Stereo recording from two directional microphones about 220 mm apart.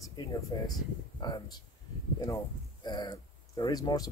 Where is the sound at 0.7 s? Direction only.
20° left (ahead or behind).